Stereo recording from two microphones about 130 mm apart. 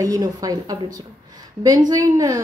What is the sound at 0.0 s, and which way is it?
A woman's voice, 25° right (ahead or behind).